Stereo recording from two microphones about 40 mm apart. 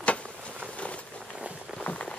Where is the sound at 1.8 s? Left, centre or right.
Left.